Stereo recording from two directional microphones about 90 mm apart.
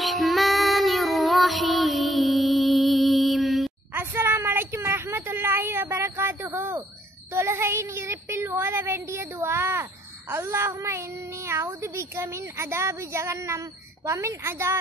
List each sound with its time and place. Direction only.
0.0 s child singing: centre (ahead or behind)
3.9 s a sound: 25° right (ahead or behind)
7.3 s speech: 30° right (ahead or behind)